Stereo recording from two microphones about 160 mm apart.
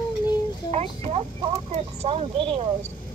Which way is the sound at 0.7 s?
45° right (ahead or behind).